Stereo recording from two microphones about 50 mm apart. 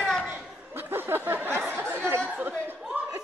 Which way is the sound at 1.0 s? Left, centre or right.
Right.